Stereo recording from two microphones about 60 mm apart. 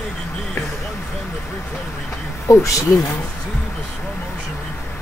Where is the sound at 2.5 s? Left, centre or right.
Left.